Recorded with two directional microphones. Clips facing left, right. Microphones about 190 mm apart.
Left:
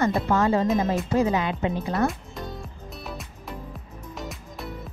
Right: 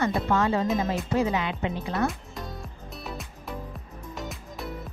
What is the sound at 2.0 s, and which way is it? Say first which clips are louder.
Music: left 3 dB; centre (ahead or behind).